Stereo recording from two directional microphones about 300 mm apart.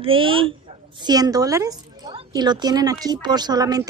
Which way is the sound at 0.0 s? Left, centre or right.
Centre.